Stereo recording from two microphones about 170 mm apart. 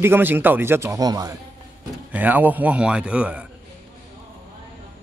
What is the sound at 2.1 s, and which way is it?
Speech, 10° right (ahead or behind).